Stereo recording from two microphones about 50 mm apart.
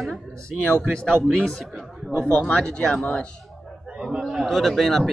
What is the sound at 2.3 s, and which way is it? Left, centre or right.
Speech, left.